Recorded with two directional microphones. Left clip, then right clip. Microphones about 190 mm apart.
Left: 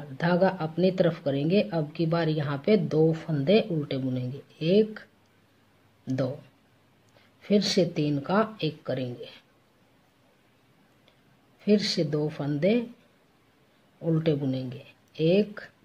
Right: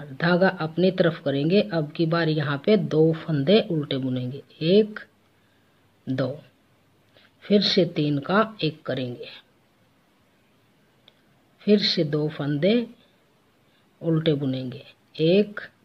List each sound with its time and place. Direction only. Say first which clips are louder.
0.0 s speech: right 3 dB; 15° right (ahead or behind)
6.0 s speech: right 3 dB; 15° right (ahead or behind)
7.4 s speech: right 4 dB; 15° right (ahead or behind)
11.6 s speech: right 4 dB; 15° right (ahead or behind)
14.0 s speech: right 3 dB; 20° right (ahead or behind)